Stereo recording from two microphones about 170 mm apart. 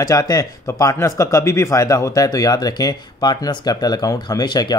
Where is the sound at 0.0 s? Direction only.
20° left (ahead or behind).